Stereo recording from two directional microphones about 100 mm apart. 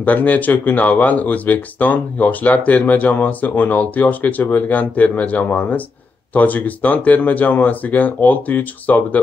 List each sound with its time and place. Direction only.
0.0 s speech: 15° left (ahead or behind)